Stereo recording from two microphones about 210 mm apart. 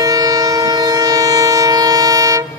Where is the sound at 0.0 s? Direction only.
15° right (ahead or behind).